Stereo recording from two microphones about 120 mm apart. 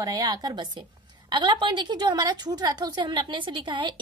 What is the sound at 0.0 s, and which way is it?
A woman's voice, 30° right (ahead or behind).